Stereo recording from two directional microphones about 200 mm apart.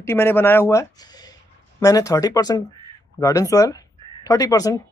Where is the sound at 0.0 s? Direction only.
10° left (ahead or behind).